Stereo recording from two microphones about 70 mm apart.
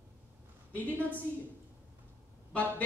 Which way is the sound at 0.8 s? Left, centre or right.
Left.